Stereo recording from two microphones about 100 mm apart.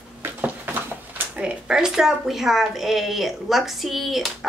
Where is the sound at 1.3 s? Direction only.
10° right (ahead or behind).